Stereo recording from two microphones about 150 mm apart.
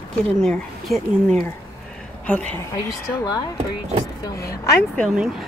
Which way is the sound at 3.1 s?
25° left (ahead or behind).